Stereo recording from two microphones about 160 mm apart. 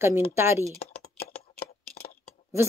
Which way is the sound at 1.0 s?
70° left (ahead or behind).